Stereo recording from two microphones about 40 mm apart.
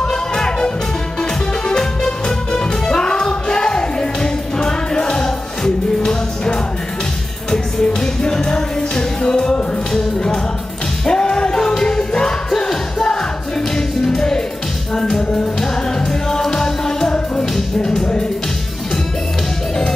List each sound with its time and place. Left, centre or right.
0.0 s music: centre
1.7 s music: left
11.1 s music: centre
16.1 s music: centre